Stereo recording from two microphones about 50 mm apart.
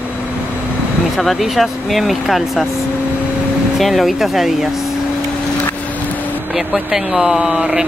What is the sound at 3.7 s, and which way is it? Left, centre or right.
Speech, centre.